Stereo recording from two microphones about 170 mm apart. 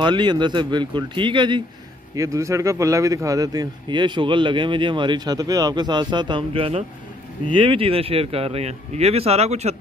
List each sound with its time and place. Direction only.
0.0 s speech: 25° right (ahead or behind)